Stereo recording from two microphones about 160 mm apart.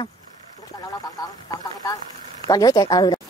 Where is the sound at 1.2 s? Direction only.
25° left (ahead or behind).